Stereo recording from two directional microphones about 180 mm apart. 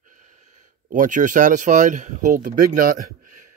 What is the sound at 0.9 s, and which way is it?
A man's voice, 45° right (ahead or behind).